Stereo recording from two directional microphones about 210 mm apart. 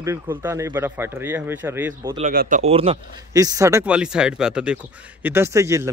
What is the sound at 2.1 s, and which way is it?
Speech, 40° right (ahead or behind).